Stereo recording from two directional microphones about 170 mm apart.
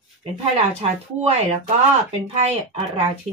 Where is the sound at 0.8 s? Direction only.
35° right (ahead or behind).